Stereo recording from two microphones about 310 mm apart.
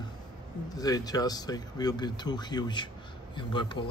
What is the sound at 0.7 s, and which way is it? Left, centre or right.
Speech, centre.